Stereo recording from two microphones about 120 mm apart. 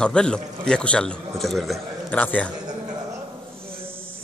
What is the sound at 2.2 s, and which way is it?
Speech, 15° left (ahead or behind).